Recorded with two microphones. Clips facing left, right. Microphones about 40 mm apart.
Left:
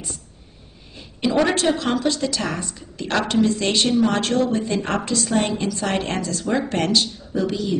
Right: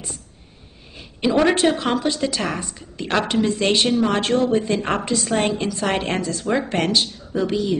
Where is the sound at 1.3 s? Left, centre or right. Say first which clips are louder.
Right 2 dB; centre.